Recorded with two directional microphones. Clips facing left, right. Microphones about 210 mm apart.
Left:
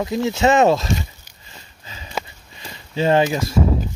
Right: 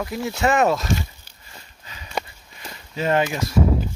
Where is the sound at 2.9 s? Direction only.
30° left (ahead or behind).